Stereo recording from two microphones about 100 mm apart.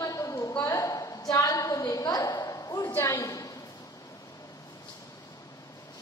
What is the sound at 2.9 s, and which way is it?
Speech, 30° left (ahead or behind).